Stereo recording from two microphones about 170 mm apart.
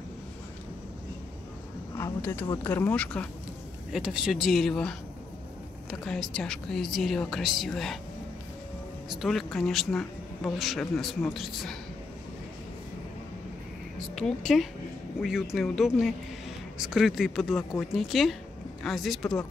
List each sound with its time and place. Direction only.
2.0 s speech: 15° left (ahead or behind)
3.9 s speech: 5° right (ahead or behind)
9.1 s speech: centre (ahead or behind)
14.5 s speech: 5° left (ahead or behind)